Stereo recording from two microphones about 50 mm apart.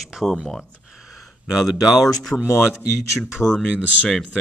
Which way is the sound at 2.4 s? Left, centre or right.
Left.